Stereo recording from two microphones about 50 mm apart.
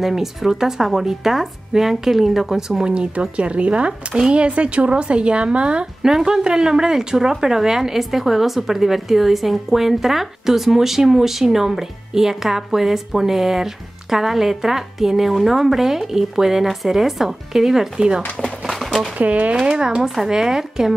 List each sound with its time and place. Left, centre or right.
0.0 s speech: centre
2.9 s a woman's voice: right
18.7 s a sound: centre
19.1 s a woman's voice: right
20.0 s speech: centre